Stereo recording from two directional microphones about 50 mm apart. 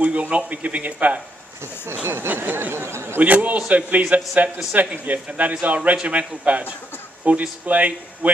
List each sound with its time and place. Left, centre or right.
0.0 s a man's voice: right
2.0 s speech: right
2.3 s speech: right
2.7 s a sound: right
3.2 s a man's voice: right